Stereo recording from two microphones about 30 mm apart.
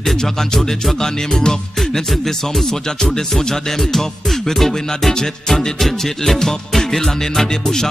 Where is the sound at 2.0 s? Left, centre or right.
Centre.